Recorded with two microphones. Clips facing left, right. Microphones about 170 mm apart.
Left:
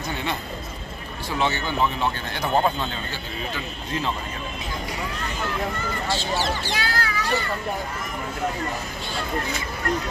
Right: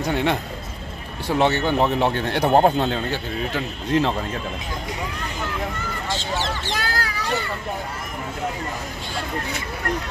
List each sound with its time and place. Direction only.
0.0 s a man's voice: 70° right (ahead or behind)
6.0 s speech: 20° right (ahead or behind)
6.8 s speech: 40° right (ahead or behind)